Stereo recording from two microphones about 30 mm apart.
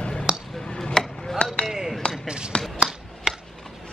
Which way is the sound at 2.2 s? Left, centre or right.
Right.